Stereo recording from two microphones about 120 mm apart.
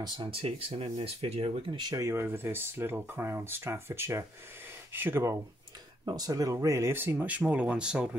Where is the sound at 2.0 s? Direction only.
20° right (ahead or behind).